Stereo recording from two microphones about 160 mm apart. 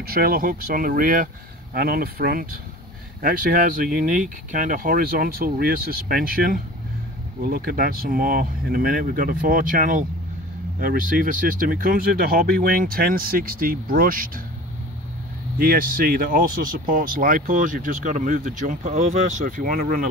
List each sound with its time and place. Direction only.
0.0 s speech: 70° right (ahead or behind)
15.6 s speech: 65° right (ahead or behind)